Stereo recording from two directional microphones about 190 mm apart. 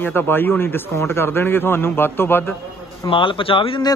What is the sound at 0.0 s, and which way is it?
A man's voice, 10° left (ahead or behind).